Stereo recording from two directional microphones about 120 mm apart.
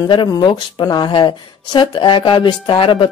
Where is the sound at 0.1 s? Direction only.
40° left (ahead or behind).